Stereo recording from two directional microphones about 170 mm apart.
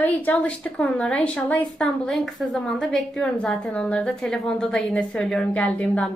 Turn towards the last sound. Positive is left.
turn(degrees=5)  # may be behind; listen again after turning